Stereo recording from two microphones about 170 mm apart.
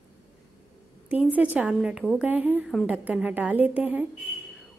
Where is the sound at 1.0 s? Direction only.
10° right (ahead or behind).